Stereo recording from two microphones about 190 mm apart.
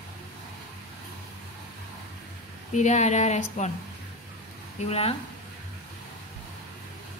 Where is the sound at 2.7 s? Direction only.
40° left (ahead or behind).